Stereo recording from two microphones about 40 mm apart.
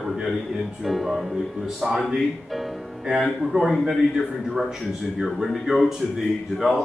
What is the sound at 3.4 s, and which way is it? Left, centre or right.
A man's voice, centre.